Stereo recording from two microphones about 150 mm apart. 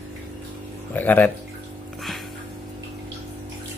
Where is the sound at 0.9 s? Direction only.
10° left (ahead or behind).